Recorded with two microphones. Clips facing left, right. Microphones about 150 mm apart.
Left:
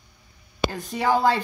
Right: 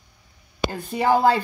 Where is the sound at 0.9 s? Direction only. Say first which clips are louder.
Right 3 dB; 15° right (ahead or behind).